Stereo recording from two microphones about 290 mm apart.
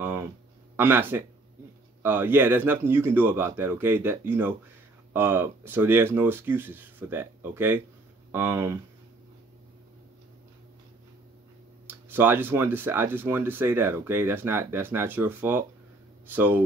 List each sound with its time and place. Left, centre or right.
0.0 s a sound: centre
0.7 s speech: centre
11.9 s speech: centre